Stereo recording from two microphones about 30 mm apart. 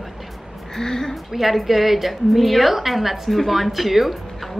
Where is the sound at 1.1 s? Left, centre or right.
Centre.